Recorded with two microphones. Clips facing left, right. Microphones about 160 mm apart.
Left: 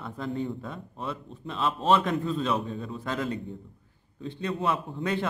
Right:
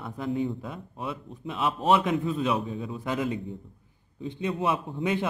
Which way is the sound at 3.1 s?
15° right (ahead or behind).